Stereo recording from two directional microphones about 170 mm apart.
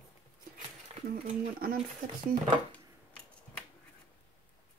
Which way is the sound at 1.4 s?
60° right (ahead or behind).